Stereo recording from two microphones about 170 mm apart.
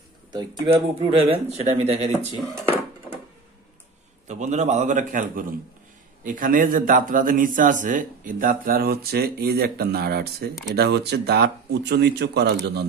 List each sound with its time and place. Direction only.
0.3 s speech: 25° right (ahead or behind)
4.3 s a man's voice: 45° right (ahead or behind); by 12.8 s 75° right (ahead or behind)